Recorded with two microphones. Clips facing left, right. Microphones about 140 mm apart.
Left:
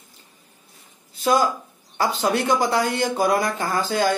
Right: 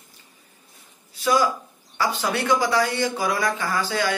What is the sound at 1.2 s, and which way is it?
Speech, 50° left (ahead or behind).